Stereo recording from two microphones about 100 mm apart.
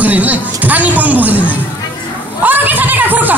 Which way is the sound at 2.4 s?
20° right (ahead or behind).